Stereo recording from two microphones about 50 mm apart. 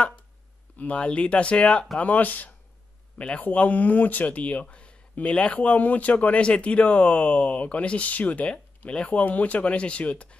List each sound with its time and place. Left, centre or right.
0.7 s speech: left
3.2 s speech: left